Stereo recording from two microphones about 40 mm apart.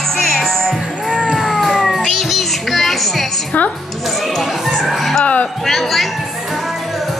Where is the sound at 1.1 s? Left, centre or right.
Right.